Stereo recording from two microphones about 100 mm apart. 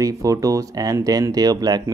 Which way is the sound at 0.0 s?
35° right (ahead or behind).